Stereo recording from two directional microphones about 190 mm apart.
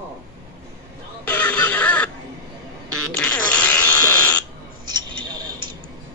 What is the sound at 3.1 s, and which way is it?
Fart, 5° left (ahead or behind).